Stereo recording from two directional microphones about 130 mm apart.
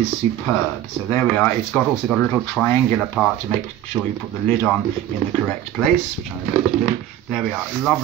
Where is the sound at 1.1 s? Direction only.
15° left (ahead or behind).